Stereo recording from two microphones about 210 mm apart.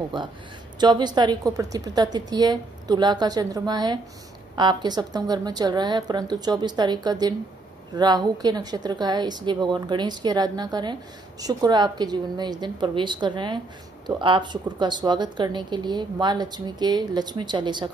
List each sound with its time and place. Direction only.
0.1 s speech: 20° right (ahead or behind)